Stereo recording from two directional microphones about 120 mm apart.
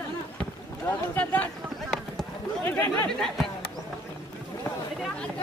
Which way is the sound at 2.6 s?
20° left (ahead or behind).